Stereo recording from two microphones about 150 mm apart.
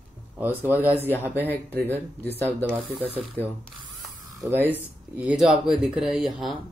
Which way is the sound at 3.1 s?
40° right (ahead or behind).